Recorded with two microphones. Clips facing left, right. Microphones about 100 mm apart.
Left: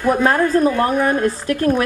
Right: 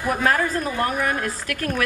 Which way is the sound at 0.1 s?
30° left (ahead or behind).